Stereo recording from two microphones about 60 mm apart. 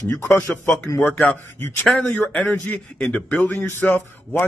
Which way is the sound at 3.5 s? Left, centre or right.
Left.